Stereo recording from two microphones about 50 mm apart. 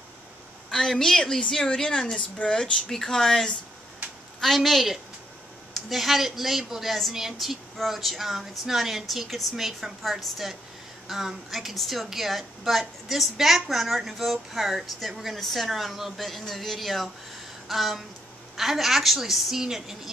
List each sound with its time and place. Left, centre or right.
0.7 s a woman's voice: centre
4.4 s a woman's voice: centre